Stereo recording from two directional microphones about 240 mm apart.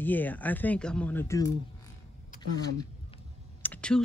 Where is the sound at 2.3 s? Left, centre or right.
Left.